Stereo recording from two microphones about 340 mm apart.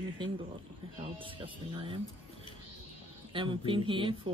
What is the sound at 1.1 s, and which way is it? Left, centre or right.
Speech, centre.